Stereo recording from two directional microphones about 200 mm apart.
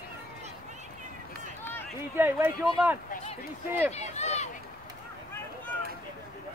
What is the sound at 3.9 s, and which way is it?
Speech, 35° left (ahead or behind).